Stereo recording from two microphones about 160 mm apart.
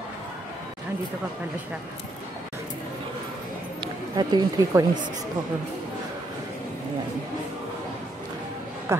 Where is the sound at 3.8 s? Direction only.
25° right (ahead or behind).